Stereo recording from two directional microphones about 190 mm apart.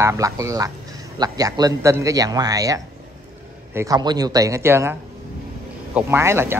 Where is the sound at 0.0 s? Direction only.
15° right (ahead or behind).